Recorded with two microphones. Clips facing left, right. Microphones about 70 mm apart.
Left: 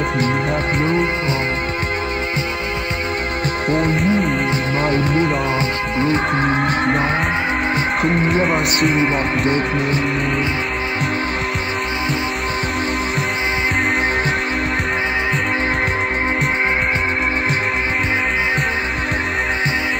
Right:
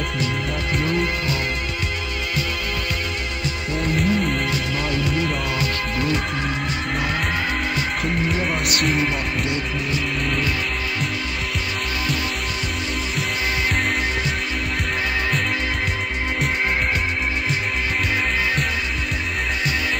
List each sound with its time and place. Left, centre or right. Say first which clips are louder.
0.7 s music: left 3 dB; left
3.7 s music: left 3 dB; left
8.0 s speech: left 7 dB; left